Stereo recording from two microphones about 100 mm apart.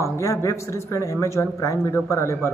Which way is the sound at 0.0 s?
30° left (ahead or behind).